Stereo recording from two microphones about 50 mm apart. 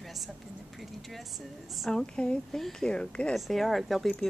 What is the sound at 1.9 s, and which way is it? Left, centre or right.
Speech, centre.